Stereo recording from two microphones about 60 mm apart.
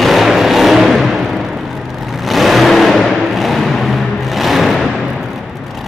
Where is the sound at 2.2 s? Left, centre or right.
Centre.